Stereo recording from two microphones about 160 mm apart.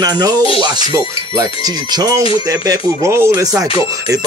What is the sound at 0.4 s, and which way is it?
Speech, 35° left (ahead or behind).